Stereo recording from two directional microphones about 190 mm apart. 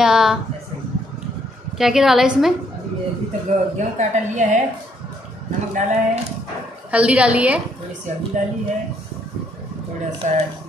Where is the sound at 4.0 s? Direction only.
40° right (ahead or behind).